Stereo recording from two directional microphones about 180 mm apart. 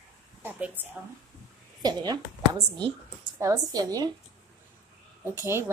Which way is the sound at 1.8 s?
20° right (ahead or behind).